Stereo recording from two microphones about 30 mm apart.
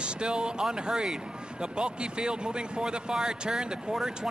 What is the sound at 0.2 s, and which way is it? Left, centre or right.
A man's voice, right.